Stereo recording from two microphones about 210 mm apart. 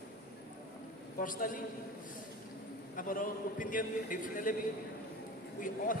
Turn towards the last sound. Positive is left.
turn(degrees=40)  # may be behind; listen again after turning